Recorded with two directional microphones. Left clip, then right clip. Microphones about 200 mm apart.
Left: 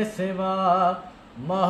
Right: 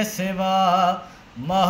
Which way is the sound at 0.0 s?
5° right (ahead or behind).